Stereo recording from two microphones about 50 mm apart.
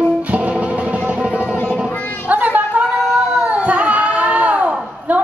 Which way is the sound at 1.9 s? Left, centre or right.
Left.